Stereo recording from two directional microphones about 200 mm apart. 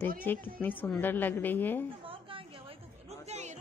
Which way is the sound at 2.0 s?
25° right (ahead or behind).